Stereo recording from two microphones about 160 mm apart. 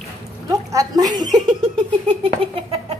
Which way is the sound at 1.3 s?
30° right (ahead or behind).